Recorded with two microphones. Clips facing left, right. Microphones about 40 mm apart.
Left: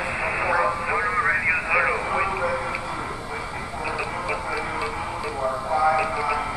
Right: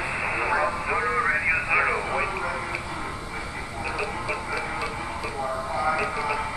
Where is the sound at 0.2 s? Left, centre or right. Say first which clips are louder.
Left 2 dB; centre.